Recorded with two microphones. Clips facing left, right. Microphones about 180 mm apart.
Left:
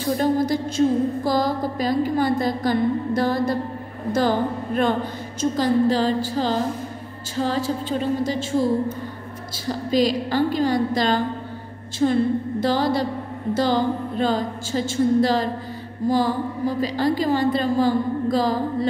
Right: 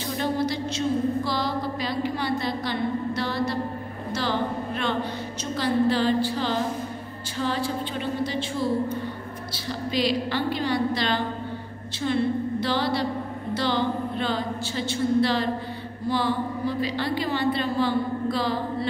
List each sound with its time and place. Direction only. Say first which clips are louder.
0.2 s a woman's voice: left 3 dB; 50° left (ahead or behind)
9.7 s a woman's voice: left 5 dB; 45° left (ahead or behind)